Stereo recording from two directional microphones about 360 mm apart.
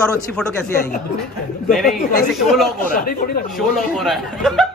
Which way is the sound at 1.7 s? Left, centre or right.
Centre.